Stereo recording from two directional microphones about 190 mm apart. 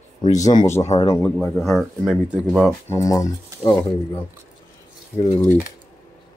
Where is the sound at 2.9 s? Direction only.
15° left (ahead or behind).